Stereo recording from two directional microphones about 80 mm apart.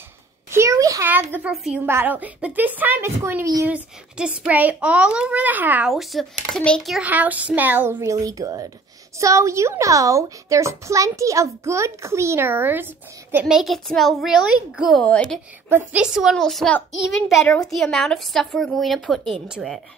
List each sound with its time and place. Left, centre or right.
0.5 s a sound: right
0.7 s a sound: right
1.0 s a child's voice: right
1.5 s a child's voice: centre
2.0 s speech: centre
3.6 s a child's voice: centre
5.9 s a child's voice: centre
7.0 s speech: centre
8.0 s a woman's voice: right
13.5 s a child's voice: centre
15.9 s a child's voice: centre
16.3 s a child's voice: centre
19.4 s a child's voice: centre